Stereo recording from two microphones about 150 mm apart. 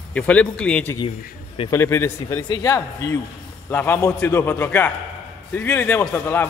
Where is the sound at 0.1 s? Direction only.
10° left (ahead or behind).